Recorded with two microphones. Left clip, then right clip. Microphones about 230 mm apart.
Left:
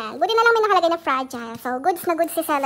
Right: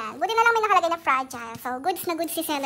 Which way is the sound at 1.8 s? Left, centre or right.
Centre.